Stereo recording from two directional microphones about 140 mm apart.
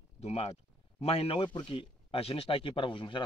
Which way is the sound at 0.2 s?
50° left (ahead or behind).